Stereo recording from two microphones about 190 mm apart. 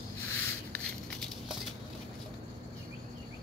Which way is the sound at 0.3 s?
10° left (ahead or behind).